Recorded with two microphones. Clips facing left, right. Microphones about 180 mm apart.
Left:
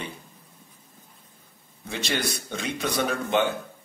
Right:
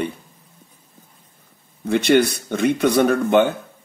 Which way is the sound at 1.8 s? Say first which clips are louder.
Right 13 dB; 60° right (ahead or behind).